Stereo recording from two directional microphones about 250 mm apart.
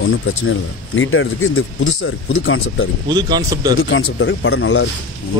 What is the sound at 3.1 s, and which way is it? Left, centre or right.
Speech, centre.